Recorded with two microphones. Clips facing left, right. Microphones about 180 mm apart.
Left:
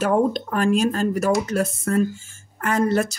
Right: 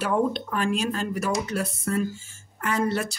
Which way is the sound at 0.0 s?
45° left (ahead or behind).